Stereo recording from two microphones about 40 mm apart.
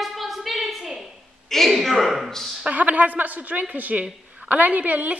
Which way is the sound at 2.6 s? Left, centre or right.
Right.